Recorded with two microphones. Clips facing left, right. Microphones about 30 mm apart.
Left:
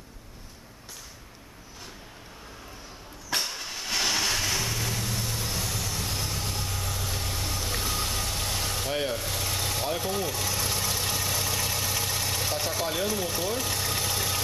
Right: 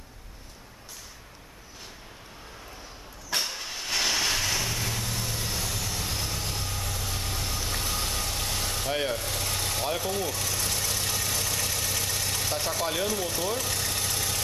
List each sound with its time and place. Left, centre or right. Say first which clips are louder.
3.3 s vehicle: even; centre